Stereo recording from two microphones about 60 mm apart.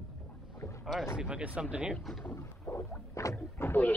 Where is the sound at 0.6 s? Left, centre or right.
Left.